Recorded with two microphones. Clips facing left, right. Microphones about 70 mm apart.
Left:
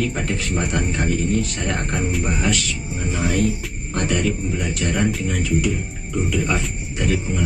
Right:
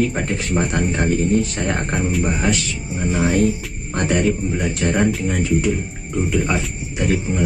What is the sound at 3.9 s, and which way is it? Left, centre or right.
Speech, right.